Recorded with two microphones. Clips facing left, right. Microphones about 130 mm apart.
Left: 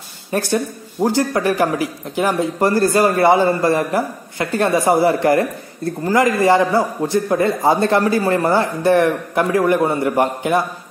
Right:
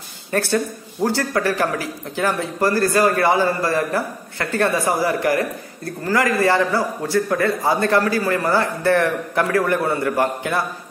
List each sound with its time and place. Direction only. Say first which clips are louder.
0.3 s a man's voice: left 1 dB; 15° left (ahead or behind)